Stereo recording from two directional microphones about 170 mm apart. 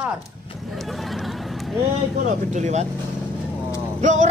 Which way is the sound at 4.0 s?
45° right (ahead or behind).